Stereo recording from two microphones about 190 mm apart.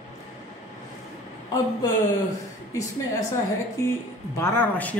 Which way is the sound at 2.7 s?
15° left (ahead or behind).